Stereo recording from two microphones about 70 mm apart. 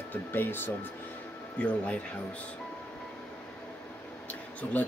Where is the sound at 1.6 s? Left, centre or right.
Centre.